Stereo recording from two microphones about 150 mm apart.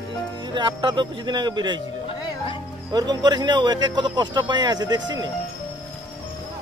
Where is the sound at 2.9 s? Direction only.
30° right (ahead or behind).